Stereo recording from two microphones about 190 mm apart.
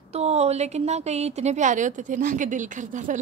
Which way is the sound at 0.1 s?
35° right (ahead or behind).